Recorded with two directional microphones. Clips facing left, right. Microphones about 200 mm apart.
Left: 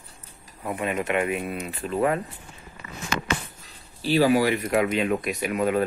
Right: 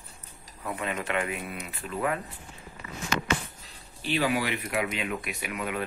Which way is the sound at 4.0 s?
35° left (ahead or behind).